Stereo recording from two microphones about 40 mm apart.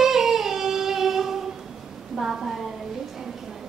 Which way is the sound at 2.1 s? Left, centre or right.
Centre.